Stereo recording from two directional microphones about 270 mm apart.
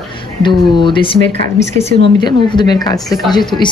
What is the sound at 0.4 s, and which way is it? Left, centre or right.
A woman's voice, centre.